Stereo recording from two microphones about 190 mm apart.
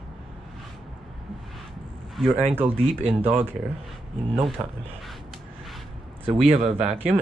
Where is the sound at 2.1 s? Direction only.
5° right (ahead or behind).